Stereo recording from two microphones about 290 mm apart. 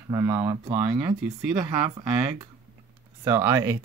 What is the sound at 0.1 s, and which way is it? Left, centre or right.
Speech, centre.